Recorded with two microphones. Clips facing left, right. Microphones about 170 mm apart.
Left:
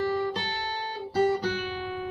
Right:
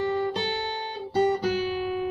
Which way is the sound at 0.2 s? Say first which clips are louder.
Right 3 dB; 25° right (ahead or behind).